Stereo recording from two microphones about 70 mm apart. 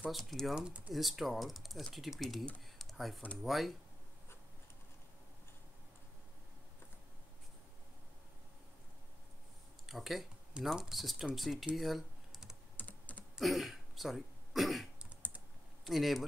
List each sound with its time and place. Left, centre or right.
0.1 s speech: centre
0.6 s speech: centre
0.9 s speech: centre
2.8 s typing: centre
3.4 s speech: centre
9.8 s speech: centre
11.7 s computer keyboard: centre
12.7 s computer keyboard: left
13.4 s speech: centre
15.0 s typing: right
15.8 s speech: centre